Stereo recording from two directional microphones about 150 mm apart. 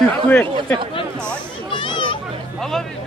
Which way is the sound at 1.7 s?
35° left (ahead or behind).